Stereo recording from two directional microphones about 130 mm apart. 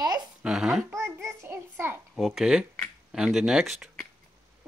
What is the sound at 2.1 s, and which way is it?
A child's voice, centre (ahead or behind).